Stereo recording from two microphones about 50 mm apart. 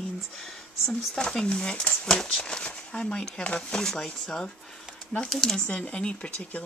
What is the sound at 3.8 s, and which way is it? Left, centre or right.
Speech, centre.